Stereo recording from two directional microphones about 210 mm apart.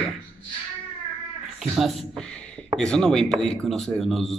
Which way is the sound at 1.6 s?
Centre (ahead or behind).